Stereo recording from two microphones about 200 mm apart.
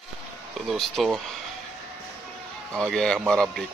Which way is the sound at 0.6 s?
Centre (ahead or behind).